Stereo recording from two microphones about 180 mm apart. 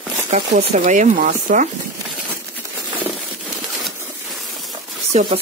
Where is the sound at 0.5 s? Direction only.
45° right (ahead or behind).